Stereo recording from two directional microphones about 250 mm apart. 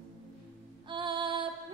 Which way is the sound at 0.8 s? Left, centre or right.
Centre.